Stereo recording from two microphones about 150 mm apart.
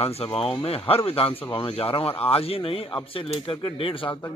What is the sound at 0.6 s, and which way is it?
A man's voice, 40° left (ahead or behind).